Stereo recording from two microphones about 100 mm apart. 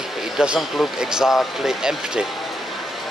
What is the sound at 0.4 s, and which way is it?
Speech, 5° right (ahead or behind).